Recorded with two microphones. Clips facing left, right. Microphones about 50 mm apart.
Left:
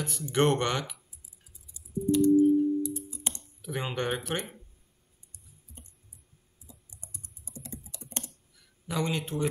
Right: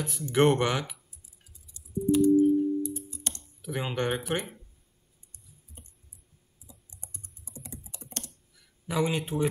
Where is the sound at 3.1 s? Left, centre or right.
Centre.